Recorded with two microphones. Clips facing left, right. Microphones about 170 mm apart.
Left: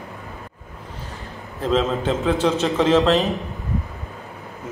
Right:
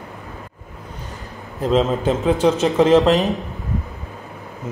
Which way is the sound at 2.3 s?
35° right (ahead or behind).